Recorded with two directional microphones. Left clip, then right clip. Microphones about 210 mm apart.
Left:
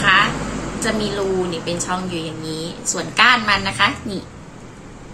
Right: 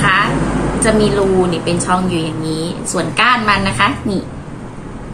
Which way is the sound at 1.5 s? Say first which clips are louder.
Right 7 dB; 5° left (ahead or behind).